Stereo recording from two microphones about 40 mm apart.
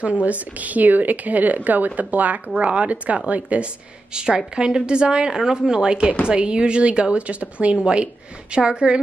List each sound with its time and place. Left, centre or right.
0.2 s a woman's voice: right
4.1 s a woman's voice: right